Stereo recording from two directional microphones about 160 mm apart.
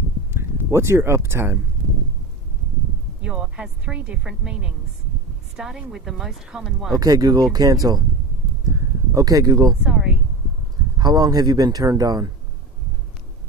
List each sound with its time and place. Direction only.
0.3 s speech: 15° right (ahead or behind)
3.2 s a woman's voice: 5° right (ahead or behind)
7.0 s speech: 20° right (ahead or behind)
8.6 s a sound: 20° right (ahead or behind)
9.8 s a woman's voice: 5° right (ahead or behind)
11.0 s speech: 25° right (ahead or behind)